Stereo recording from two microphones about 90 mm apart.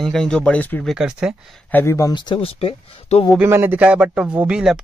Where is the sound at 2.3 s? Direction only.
90° left.